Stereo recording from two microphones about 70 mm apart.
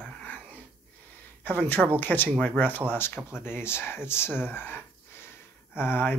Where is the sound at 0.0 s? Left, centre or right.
Left.